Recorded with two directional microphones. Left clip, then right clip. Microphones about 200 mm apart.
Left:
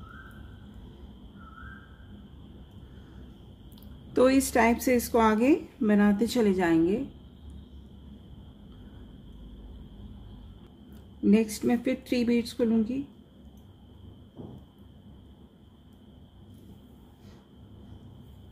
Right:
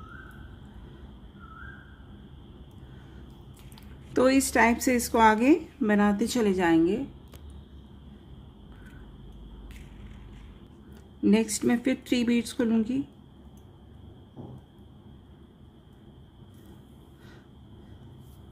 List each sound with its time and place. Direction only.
4.1 s a woman's voice: 10° right (ahead or behind)
11.2 s speech: 20° right (ahead or behind)